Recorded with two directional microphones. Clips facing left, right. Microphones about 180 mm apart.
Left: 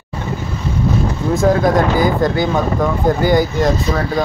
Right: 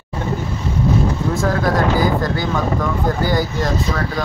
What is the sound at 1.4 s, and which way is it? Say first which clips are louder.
Speech: left 5 dB; 20° left (ahead or behind).